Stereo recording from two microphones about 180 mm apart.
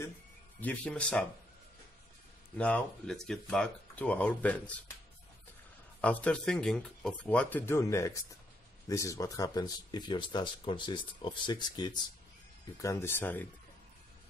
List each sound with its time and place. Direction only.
0.6 s speech: 10° left (ahead or behind)
2.5 s speech: 5° left (ahead or behind)
5.9 s speech: 5° left (ahead or behind)